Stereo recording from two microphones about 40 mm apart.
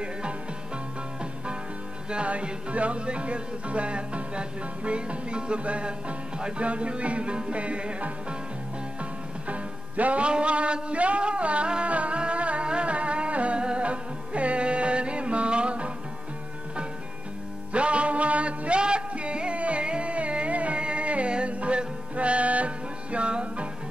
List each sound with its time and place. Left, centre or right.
2.0 s music: right
9.5 s music: right
17.7 s music: right